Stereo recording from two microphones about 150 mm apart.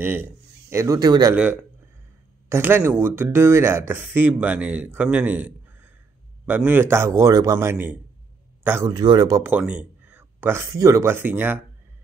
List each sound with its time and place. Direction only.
0.0 s a man's voice: 15° right (ahead or behind)
1.3 s a man's voice: 10° right (ahead or behind)
8.9 s speech: 30° right (ahead or behind)
9.4 s speech: 10° right (ahead or behind)